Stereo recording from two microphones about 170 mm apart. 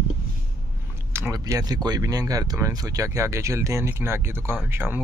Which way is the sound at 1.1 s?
20° right (ahead or behind).